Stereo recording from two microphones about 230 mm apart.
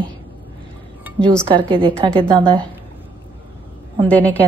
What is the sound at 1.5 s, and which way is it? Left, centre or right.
Speech, right.